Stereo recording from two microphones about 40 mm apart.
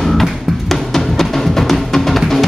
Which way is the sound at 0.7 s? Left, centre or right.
Centre.